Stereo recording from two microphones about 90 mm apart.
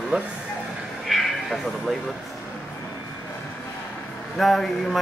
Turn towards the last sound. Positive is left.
turn(degrees=0)  # may be behind; listen again after turning